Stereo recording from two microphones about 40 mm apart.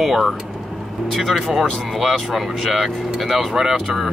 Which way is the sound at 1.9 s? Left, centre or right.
Centre.